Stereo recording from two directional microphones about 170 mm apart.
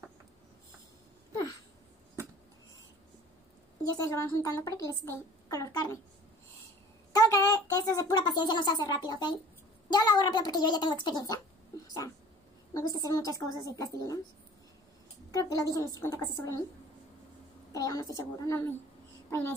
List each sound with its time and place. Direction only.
3.9 s a woman's voice: 20° left (ahead or behind)
7.1 s a woman's voice: 20° left (ahead or behind)
12.7 s a woman's voice: 20° left (ahead or behind)
15.3 s a woman's voice: 20° left (ahead or behind)
17.7 s a woman's voice: 20° left (ahead or behind)